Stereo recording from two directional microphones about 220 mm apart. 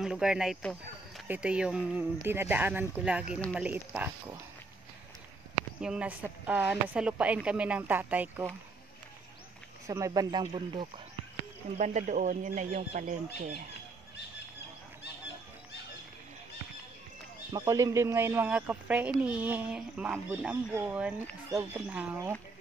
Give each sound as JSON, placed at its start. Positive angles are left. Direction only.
{"t": 0.0, "sound": "a woman's voice", "side_deg": 0}
{"t": 5.8, "sound": "a woman's voice", "side_deg": -5}
{"t": 9.8, "sound": "speech", "side_deg": -15}
{"t": 11.8, "sound": "speech", "side_deg": -35}
{"t": 17.5, "sound": "speech", "side_deg": -15}